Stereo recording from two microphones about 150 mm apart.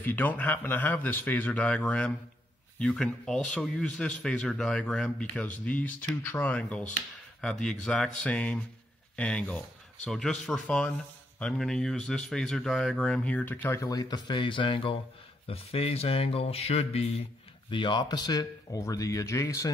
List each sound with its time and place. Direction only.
0.0 s a man's voice: 10° left (ahead or behind)